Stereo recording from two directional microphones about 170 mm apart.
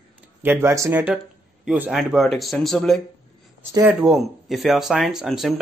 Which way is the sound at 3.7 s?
15° right (ahead or behind).